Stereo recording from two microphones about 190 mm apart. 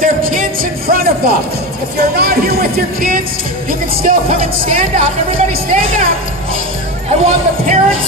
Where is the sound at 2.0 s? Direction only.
55° right (ahead or behind).